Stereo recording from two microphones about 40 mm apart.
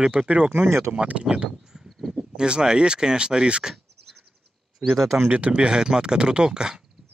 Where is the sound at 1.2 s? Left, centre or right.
Right.